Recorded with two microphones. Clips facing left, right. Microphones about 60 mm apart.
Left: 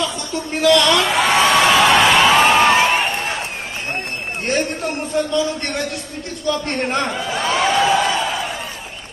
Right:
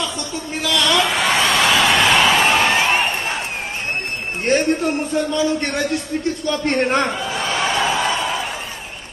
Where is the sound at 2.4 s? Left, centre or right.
Centre.